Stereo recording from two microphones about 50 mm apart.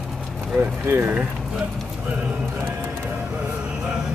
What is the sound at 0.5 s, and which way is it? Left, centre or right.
Speech, right.